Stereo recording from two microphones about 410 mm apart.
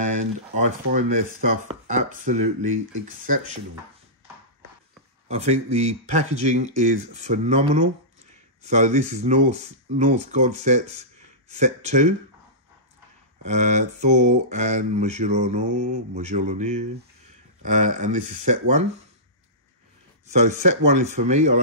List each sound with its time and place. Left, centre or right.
0.0 s speech: centre
5.3 s speech: centre
13.5 s speech: centre
20.4 s speech: centre